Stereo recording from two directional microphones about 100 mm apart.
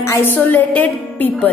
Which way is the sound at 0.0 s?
25° left (ahead or behind).